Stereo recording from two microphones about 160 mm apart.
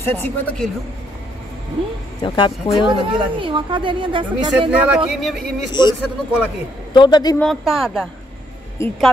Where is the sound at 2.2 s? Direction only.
30° left (ahead or behind).